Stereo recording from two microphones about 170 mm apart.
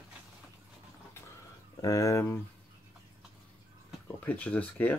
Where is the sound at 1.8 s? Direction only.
20° left (ahead or behind).